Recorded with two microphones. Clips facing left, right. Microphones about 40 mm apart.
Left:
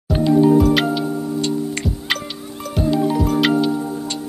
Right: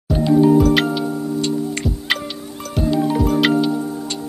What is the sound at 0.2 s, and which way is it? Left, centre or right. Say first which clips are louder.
Music: even; centre.